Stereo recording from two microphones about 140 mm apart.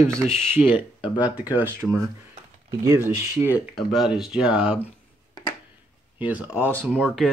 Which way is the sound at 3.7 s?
Centre (ahead or behind).